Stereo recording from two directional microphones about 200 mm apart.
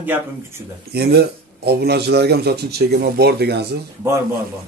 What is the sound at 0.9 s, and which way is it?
Speech, 55° right (ahead or behind).